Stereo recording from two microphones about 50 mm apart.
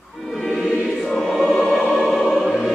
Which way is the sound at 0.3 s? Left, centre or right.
Centre.